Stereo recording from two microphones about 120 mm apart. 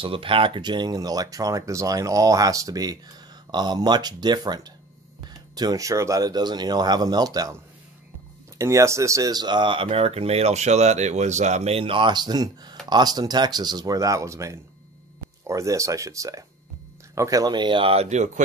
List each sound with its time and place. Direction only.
0.0 s speech: 50° right (ahead or behind); by 7.5 s 30° right (ahead or behind)
8.5 s speech: 25° right (ahead or behind); by 18.0 s 45° right (ahead or behind)
18.0 s speech: 75° right (ahead or behind)